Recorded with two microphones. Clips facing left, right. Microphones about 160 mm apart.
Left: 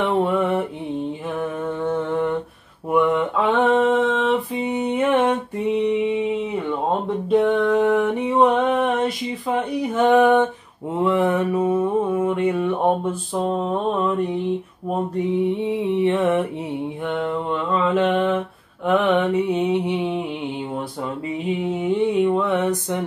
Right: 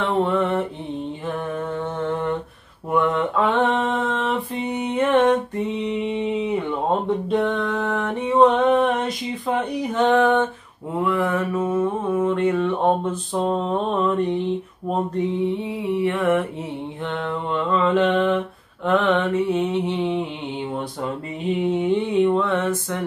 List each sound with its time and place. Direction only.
0.0 s mantra: 10° left (ahead or behind)
1.4 s humming: 5° left (ahead or behind)
2.9 s mantra: 10° left (ahead or behind)
5.9 s a sound: centre (ahead or behind)
11.0 s mantra: 20° left (ahead or behind); by 14.4 s 5° left (ahead or behind)
15.9 s mantra: 20° left (ahead or behind)
17.0 s mantra: 5° left (ahead or behind)
20.7 s mantra: centre (ahead or behind)